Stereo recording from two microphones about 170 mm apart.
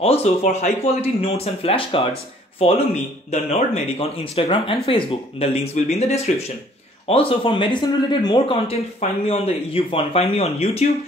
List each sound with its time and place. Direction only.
0.0 s a man's voice: 35° left (ahead or behind)